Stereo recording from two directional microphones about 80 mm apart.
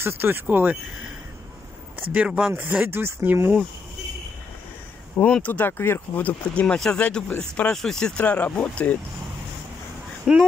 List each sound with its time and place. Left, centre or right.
0.0 s speech: right
2.1 s speech: centre
2.5 s speech: right
5.2 s speech: centre
8.2 s speech: centre
10.3 s speech: centre